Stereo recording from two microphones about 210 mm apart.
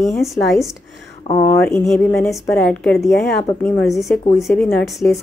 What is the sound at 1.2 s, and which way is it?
Speech, 25° left (ahead or behind).